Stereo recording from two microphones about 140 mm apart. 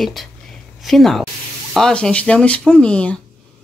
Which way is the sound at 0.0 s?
Centre (ahead or behind).